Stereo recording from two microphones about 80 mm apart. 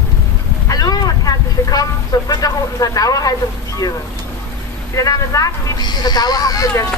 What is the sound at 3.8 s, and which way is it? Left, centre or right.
Speech, left.